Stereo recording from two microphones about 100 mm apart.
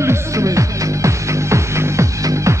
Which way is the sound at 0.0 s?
30° right (ahead or behind).